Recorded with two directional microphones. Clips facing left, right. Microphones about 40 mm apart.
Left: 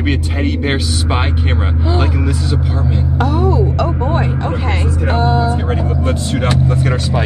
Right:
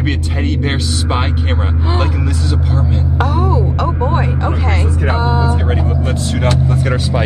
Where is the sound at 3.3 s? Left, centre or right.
Right.